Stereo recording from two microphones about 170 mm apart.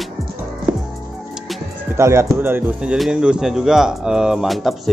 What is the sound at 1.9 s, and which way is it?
Speech, 15° right (ahead or behind).